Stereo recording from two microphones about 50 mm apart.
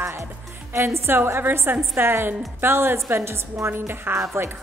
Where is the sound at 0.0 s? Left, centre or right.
Right.